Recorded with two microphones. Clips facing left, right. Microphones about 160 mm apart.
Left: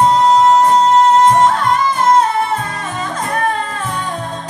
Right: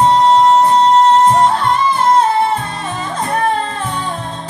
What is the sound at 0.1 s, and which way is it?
Music, 30° right (ahead or behind).